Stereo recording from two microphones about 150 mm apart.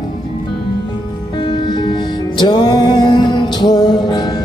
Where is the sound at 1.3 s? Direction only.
30° left (ahead or behind).